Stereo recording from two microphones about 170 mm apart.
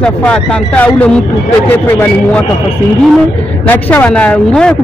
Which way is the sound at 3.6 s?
10° left (ahead or behind).